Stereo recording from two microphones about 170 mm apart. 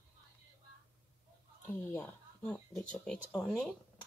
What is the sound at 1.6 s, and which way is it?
Speech, 10° left (ahead or behind).